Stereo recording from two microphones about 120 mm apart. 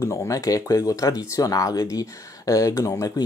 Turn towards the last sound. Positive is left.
turn(degrees=30)  # may be behind; listen again after turning